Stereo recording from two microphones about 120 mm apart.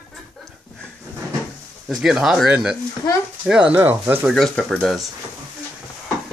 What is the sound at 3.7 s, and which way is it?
Speech, 20° right (ahead or behind).